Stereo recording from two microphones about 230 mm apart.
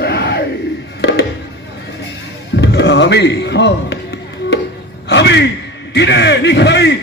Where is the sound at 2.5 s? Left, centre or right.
Left.